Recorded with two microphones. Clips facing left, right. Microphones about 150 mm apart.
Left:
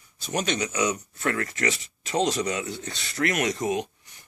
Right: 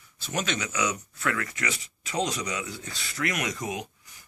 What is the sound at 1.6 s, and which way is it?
Speech, 25° left (ahead or behind).